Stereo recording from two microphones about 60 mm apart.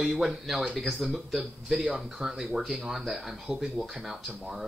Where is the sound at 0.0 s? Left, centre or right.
Centre.